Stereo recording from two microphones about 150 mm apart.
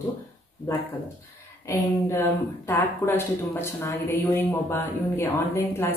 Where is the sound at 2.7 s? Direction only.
15° left (ahead or behind).